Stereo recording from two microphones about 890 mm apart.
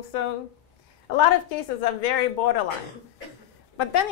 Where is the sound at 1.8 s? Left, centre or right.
Left.